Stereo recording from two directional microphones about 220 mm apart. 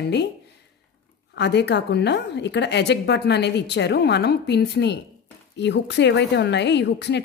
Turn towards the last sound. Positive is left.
turn(degrees=50)  # may be behind; listen again after turning